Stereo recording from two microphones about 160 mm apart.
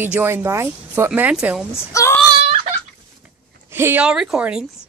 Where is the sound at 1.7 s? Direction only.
20° left (ahead or behind).